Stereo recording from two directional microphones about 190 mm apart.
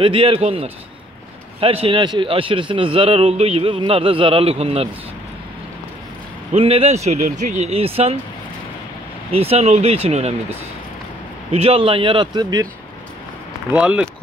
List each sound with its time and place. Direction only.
0.0 s a man's voice: 30° right (ahead or behind)
6.5 s speech: 30° right (ahead or behind)
9.3 s speech: 30° right (ahead or behind)
11.5 s a man's voice: 30° right (ahead or behind)
13.7 s speech: 5° right (ahead or behind)